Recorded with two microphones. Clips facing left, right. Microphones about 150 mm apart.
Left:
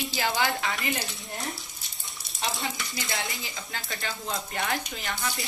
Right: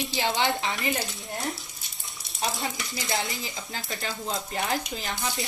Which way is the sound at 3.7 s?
30° right (ahead or behind).